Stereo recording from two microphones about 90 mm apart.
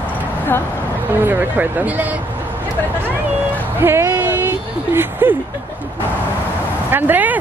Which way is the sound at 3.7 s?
30° right (ahead or behind).